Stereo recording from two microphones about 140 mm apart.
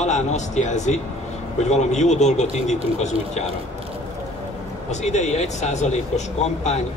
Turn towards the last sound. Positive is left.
turn(degrees=55)  # may be behind; listen again after turning